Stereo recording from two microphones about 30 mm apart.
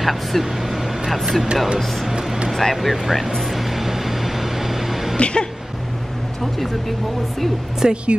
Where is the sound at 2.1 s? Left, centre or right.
Centre.